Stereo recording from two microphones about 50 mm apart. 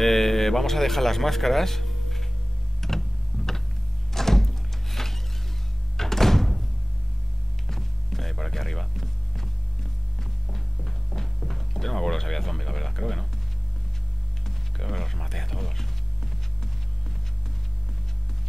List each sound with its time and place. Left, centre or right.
0.0 s speech: centre
2.8 s a sound: centre
3.3 s a sound: centre
4.1 s door: centre
5.9 s thunk: centre
7.6 s music: centre
14.4 s music: centre